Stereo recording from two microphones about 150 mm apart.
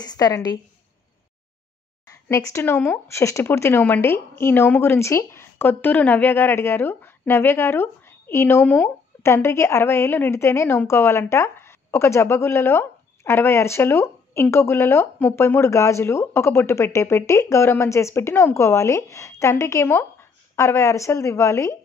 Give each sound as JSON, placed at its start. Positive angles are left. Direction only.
{"t": 0.0, "sound": "a woman's voice", "side_deg": 25}
{"t": 2.2, "sound": "speech", "side_deg": 20}